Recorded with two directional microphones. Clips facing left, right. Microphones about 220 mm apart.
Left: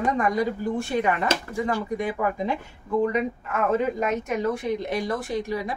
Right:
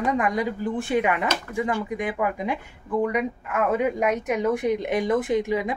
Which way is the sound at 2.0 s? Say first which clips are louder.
Even; 15° right (ahead or behind).